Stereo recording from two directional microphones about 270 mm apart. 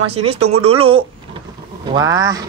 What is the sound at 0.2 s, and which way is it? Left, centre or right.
Speech, right.